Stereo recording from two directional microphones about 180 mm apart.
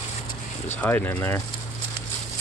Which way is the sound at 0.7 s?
10° left (ahead or behind).